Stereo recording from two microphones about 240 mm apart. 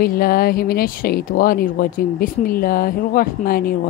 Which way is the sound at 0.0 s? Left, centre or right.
Left.